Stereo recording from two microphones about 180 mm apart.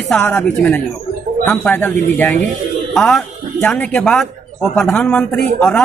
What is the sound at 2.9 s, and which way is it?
A man's voice, centre (ahead or behind).